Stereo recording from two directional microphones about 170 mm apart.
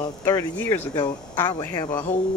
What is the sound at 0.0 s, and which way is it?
Speech, 20° left (ahead or behind).